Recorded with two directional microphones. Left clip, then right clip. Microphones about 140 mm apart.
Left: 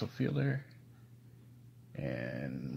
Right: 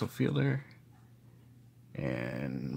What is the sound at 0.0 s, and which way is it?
Speech, 30° right (ahead or behind).